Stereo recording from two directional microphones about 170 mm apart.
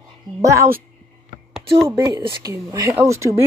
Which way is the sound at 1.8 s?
15° right (ahead or behind).